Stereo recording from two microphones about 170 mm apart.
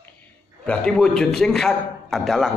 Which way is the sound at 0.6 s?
5° left (ahead or behind).